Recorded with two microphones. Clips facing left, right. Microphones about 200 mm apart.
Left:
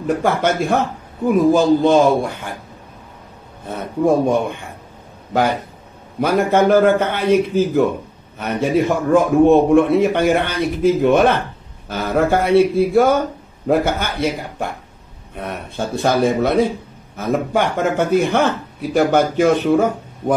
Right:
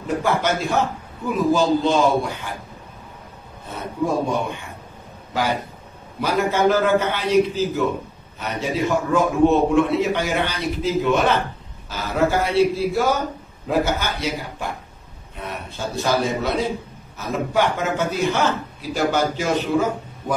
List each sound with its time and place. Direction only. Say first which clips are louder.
0.0 s a man's voice: left 4 dB; 55° left (ahead or behind)
3.6 s speech: left 7 dB; 55° left (ahead or behind)